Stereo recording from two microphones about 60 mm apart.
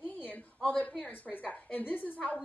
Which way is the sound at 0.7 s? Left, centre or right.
Centre.